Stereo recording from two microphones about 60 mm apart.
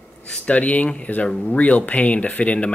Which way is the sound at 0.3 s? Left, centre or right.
Left.